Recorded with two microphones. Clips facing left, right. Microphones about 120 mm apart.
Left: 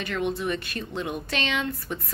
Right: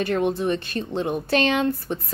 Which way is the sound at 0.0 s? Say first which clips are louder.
Right 6 dB; 40° right (ahead or behind).